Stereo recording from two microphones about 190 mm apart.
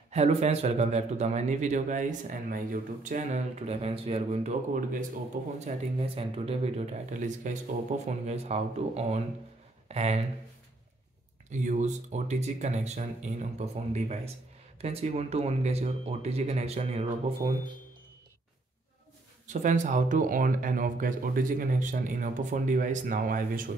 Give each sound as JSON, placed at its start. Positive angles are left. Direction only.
{"t": 0.1, "sound": "speech", "side_deg": -35}
{"t": 11.6, "sound": "speech", "side_deg": -40}
{"t": 19.4, "sound": "speech", "side_deg": -40}